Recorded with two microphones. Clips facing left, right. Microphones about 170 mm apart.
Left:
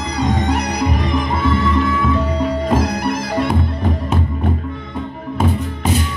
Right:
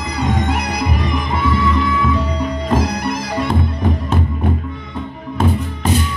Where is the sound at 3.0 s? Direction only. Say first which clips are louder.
Left 2 dB; 55° left (ahead or behind).